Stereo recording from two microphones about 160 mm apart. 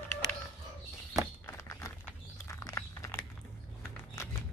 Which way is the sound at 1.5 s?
15° left (ahead or behind).